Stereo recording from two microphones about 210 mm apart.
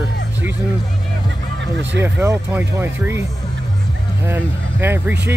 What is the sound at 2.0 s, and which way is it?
Speech, 15° right (ahead or behind).